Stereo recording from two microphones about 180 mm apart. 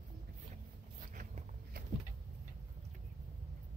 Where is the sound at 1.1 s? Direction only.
50° right (ahead or behind).